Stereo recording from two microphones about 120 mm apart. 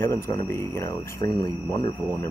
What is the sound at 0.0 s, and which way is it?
Speech, 20° left (ahead or behind).